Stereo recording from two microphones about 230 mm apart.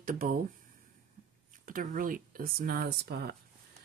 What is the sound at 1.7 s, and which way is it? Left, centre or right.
Speech, right.